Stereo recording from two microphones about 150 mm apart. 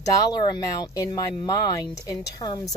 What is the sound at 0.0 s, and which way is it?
Speech, 25° left (ahead or behind).